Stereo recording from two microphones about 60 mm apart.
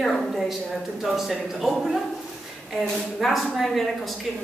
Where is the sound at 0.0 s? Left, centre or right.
Centre.